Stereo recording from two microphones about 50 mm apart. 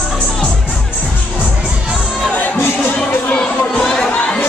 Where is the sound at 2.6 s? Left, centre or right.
Left.